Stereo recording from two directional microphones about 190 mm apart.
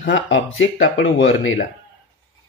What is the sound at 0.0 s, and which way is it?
Mantra, 75° left (ahead or behind).